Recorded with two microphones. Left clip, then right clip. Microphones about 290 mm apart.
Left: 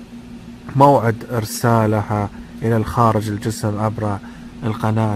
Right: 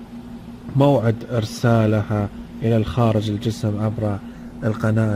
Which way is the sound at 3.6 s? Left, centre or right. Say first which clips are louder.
Left 3 dB; left.